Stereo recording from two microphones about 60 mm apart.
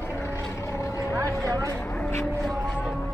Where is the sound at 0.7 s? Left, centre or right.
Left.